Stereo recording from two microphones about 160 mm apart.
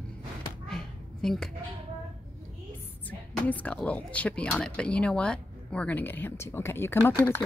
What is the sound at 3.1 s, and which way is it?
Speech, 10° left (ahead or behind).